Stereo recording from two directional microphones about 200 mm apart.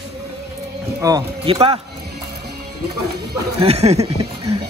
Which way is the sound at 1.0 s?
20° right (ahead or behind).